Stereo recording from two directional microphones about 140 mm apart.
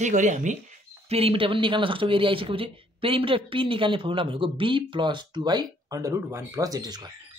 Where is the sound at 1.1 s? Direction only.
40° right (ahead or behind).